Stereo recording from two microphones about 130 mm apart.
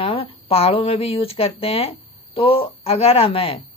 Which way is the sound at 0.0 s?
45° left (ahead or behind).